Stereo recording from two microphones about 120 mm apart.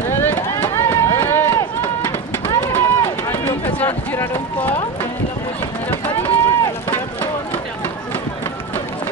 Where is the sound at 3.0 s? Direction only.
25° left (ahead or behind).